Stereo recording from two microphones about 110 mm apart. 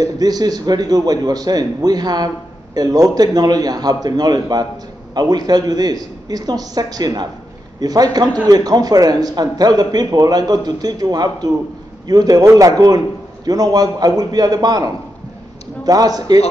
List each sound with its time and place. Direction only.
0.0 s a man's voice: 35° right (ahead or behind)